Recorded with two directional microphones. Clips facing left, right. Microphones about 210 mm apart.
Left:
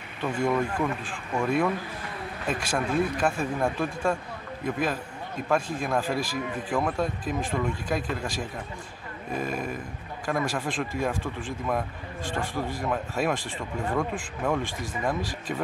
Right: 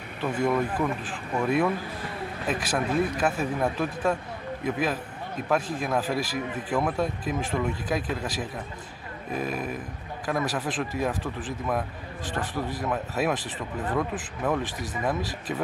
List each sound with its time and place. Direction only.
0.2 s speech: 5° right (ahead or behind)
12.8 s speech: 5° right (ahead or behind)